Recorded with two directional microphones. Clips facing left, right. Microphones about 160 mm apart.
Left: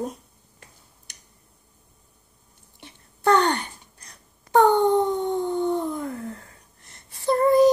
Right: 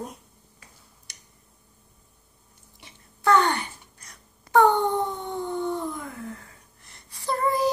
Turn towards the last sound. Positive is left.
turn(degrees=50)  # may be behind; listen again after turning